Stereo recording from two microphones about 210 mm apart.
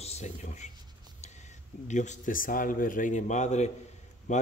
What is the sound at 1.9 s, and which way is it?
A man's voice, 35° left (ahead or behind).